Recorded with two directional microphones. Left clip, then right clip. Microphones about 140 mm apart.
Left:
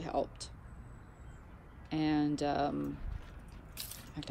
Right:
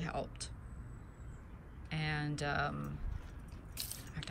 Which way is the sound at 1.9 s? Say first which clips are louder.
Left 7 dB; 10° left (ahead or behind).